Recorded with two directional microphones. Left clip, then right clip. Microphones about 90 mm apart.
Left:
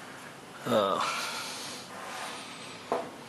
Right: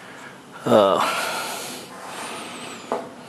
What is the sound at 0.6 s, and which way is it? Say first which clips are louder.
Snort: right 11 dB; 30° right (ahead or behind).